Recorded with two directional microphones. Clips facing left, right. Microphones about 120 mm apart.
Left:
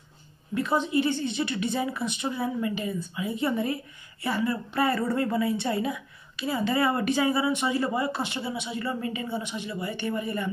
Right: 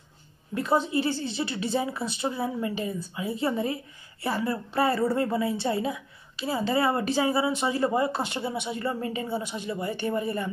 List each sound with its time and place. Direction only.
0.6 s a woman's voice: 35° right (ahead or behind)